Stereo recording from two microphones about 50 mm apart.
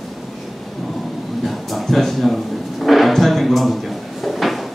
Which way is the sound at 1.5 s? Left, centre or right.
Centre.